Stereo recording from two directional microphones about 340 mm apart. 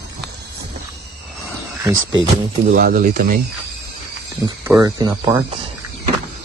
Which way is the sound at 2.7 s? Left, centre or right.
Right.